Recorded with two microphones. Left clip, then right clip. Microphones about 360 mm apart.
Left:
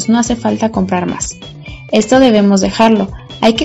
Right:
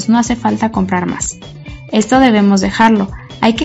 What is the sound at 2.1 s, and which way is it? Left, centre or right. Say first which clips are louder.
Speech: left 1 dB; left.